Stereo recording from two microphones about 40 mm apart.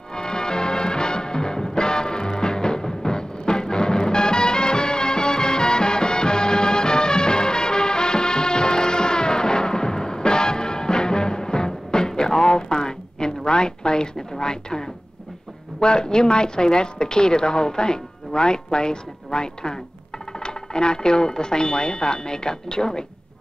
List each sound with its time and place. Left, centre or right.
0.1 s music: centre
15.8 s a woman's voice: left